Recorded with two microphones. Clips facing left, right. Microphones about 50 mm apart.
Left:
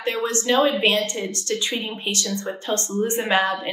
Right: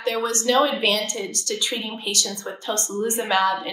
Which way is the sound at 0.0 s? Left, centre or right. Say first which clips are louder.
Right 1 dB; left.